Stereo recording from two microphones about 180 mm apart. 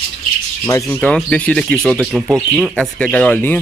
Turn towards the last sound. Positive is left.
turn(degrees=10)  # may be behind; listen again after turning